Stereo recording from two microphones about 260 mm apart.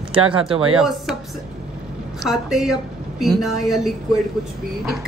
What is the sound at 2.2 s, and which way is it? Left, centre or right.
Speech, centre.